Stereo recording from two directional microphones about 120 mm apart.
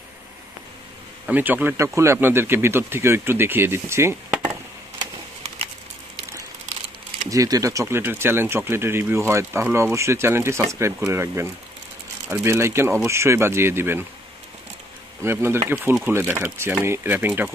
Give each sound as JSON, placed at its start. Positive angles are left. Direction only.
{"t": 1.2, "sound": "speech", "side_deg": -15}
{"t": 7.2, "sound": "speech", "side_deg": -30}
{"t": 15.2, "sound": "speech", "side_deg": -20}